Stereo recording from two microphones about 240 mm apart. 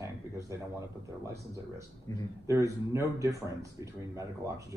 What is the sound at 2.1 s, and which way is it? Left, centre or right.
Speech, centre.